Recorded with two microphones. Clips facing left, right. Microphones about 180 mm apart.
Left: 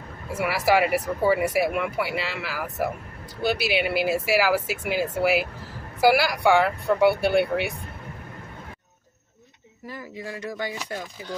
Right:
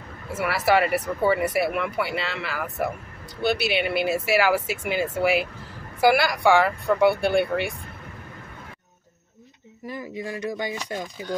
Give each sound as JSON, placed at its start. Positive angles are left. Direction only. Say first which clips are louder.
{"t": 0.3, "sound": "speech", "louder": "even", "side_deg": 10}
{"t": 9.8, "sound": "speech", "louder": "right 4 dB", "side_deg": -20}